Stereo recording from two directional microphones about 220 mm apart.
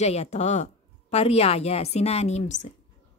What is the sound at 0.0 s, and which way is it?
A woman's voice, 30° left (ahead or behind).